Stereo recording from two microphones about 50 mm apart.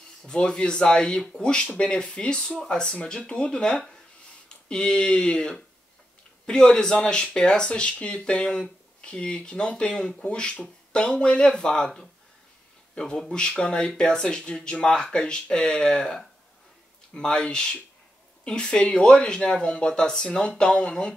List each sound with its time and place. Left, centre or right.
0.2 s speech: centre